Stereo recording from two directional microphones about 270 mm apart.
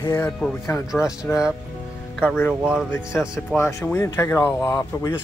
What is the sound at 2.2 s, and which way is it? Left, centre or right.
Speech, centre.